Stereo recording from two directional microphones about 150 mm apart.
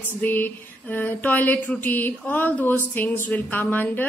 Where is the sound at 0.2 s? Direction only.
10° left (ahead or behind).